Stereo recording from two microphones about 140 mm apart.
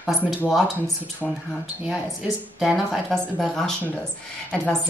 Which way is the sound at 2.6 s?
Centre (ahead or behind).